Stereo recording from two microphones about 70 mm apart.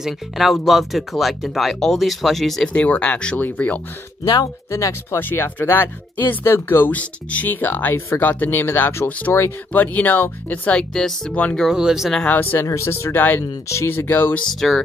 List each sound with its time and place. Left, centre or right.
0.0 s speech: centre
2.7 s speech: centre
4.2 s speech: left
4.6 s speech: left
5.2 s speech: left; by 11.3 s centre
11.7 s speech: centre
12.3 s speech: left
12.6 s speech: left
14.4 s speech: centre